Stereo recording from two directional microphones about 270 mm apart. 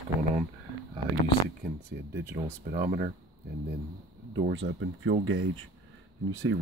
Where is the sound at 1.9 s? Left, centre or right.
Right.